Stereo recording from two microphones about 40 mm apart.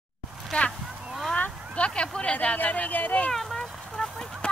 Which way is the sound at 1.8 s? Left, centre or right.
Left.